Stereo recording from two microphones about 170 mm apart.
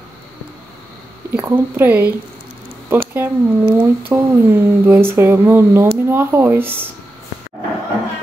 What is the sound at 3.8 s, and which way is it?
Speech, 10° right (ahead or behind).